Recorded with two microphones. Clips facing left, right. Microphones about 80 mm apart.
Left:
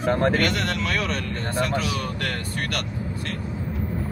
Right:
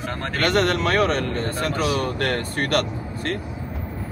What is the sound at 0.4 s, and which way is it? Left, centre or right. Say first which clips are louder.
Speech: right 4 dB; right.